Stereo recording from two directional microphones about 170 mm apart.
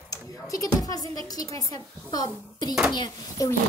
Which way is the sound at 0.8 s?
20° left (ahead or behind).